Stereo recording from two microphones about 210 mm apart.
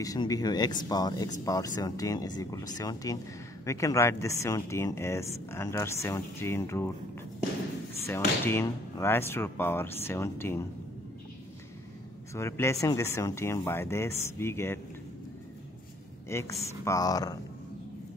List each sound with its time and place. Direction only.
0.0 s speech: 15° left (ahead or behind)
8.1 s speech: 10° left (ahead or behind)
12.4 s speech: 10° left (ahead or behind)
16.3 s speech: 15° left (ahead or behind)